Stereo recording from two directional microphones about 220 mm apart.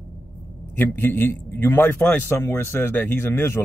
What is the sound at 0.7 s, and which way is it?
Speech, 10° left (ahead or behind).